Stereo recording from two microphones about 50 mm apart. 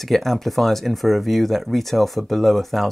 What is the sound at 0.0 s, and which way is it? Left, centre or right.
Speech, centre.